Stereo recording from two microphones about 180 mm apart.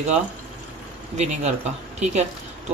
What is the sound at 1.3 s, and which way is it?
Speech, 40° right (ahead or behind).